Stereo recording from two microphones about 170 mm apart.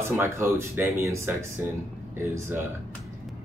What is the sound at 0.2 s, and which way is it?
Speech, 15° right (ahead or behind).